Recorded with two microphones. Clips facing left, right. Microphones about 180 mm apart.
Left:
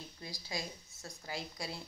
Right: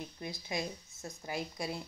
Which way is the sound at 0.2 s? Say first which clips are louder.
Right 4 dB; 20° right (ahead or behind).